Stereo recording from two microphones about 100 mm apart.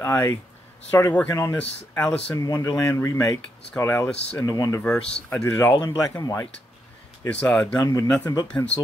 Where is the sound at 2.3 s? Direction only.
35° left (ahead or behind).